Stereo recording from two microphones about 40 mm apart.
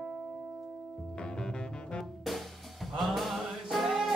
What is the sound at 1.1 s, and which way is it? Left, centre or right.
Music, left.